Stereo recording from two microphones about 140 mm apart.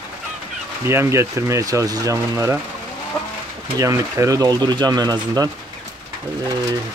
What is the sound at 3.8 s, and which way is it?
Speech, 20° right (ahead or behind).